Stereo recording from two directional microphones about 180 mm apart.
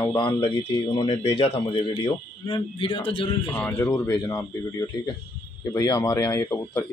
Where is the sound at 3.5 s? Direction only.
10° left (ahead or behind).